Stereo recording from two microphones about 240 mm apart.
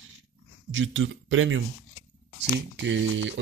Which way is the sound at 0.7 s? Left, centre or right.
Right.